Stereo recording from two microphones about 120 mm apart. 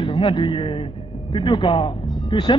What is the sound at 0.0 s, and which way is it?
Speech, 45° left (ahead or behind).